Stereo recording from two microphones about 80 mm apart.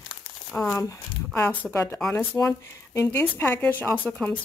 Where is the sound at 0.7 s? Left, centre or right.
Left; by 4.4 s centre.